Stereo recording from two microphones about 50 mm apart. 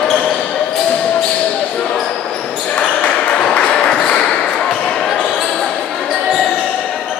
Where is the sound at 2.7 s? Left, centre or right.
Left.